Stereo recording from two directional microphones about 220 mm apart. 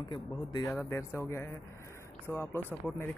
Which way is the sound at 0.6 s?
10° left (ahead or behind).